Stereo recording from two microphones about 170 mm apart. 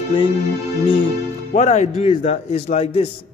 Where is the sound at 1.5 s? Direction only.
45° left (ahead or behind).